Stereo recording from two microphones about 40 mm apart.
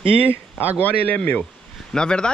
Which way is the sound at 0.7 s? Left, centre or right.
Left.